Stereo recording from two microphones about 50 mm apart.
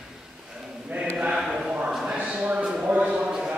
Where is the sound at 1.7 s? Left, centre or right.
Right.